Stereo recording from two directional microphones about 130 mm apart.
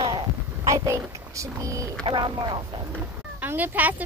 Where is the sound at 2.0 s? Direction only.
35° right (ahead or behind).